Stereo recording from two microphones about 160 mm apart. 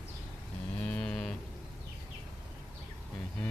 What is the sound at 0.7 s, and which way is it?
Moo, 10° left (ahead or behind).